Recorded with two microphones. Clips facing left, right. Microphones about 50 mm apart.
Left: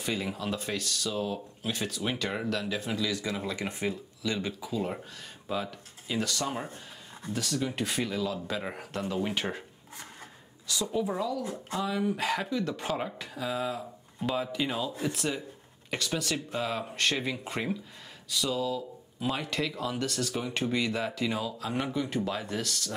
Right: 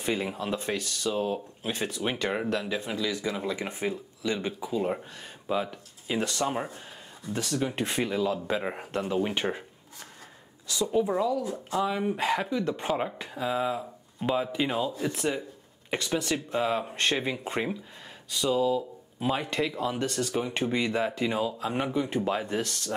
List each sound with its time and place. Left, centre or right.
0.0 s speech: right
10.7 s speech: right